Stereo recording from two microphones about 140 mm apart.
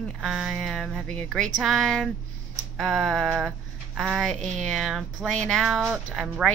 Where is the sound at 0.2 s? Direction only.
Centre (ahead or behind).